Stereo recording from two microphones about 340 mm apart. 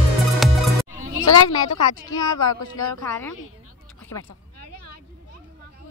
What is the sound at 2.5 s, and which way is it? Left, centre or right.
Speech, left.